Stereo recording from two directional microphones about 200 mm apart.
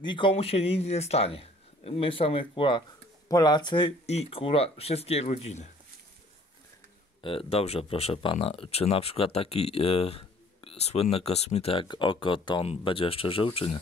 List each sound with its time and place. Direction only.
0.0 s speech: 25° left (ahead or behind)
7.2 s speech: 30° left (ahead or behind)